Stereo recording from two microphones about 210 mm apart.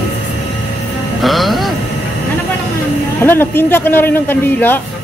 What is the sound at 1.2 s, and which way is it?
Speech, centre (ahead or behind).